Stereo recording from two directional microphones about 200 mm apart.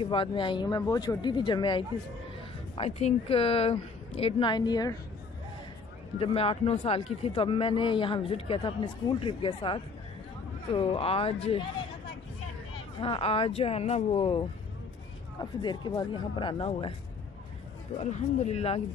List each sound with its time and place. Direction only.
0.0 s speech: 25° left (ahead or behind)
6.1 s speech: 30° left (ahead or behind)
13.0 s speech: 30° left (ahead or behind)
17.9 s speech: 35° left (ahead or behind)